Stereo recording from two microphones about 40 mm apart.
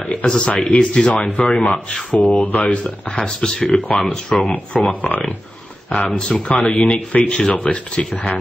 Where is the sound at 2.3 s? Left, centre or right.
Left.